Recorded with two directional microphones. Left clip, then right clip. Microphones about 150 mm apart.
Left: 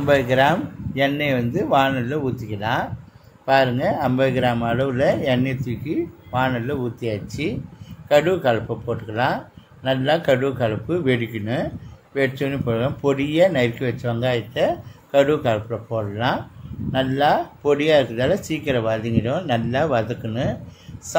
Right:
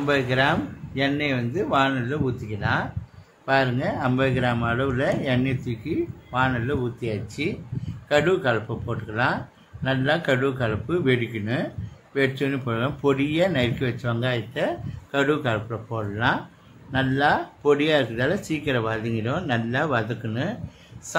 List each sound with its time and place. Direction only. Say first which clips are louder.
0.0 s speech: left 5 dB; 25° left (ahead or behind); by 20.5 s 10° left (ahead or behind)